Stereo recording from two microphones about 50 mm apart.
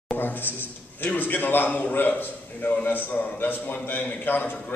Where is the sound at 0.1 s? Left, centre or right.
Left.